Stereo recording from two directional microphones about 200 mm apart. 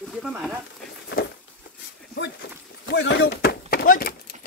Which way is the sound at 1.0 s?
55° left (ahead or behind).